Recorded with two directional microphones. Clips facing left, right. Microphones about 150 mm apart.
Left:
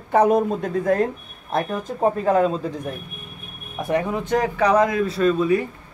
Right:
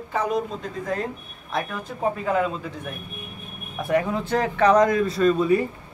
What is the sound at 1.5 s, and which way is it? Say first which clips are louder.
Speech: left 5 dB; 40° left (ahead or behind).